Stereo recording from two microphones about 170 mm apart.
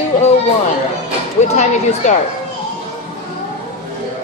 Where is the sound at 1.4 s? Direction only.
45° left (ahead or behind).